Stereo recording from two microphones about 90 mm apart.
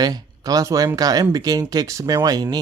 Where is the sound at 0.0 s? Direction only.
45° right (ahead or behind).